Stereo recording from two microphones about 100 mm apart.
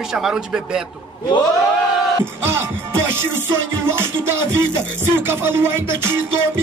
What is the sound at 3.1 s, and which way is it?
Music, 25° right (ahead or behind).